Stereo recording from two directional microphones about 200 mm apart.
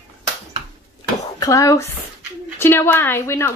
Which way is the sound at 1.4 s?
15° left (ahead or behind).